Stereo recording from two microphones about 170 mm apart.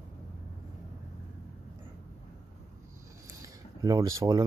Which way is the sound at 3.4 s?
20° right (ahead or behind).